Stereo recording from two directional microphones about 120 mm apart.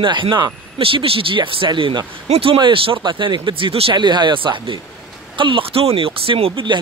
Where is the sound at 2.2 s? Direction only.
50° right (ahead or behind).